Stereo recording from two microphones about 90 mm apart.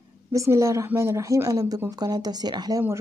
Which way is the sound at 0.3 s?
35° right (ahead or behind).